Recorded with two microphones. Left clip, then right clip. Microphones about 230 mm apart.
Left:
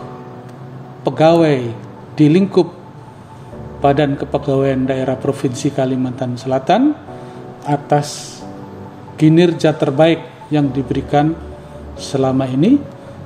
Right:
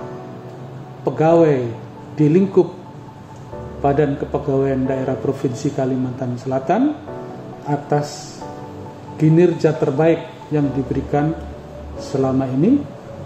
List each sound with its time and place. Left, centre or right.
1.0 s a man's voice: left
3.8 s a man's voice: left
9.2 s a man's voice: left